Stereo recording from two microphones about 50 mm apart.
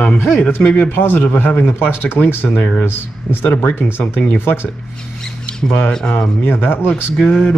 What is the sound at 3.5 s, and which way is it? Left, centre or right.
Speech, left.